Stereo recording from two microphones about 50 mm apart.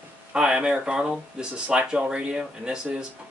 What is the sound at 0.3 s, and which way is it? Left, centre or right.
Speech, centre.